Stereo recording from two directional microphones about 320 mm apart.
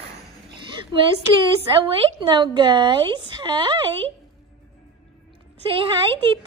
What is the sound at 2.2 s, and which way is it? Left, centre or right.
A woman's voice, centre.